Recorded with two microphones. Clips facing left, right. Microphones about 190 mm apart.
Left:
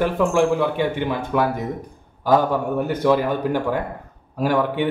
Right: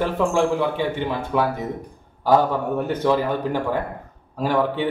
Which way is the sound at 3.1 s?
15° left (ahead or behind).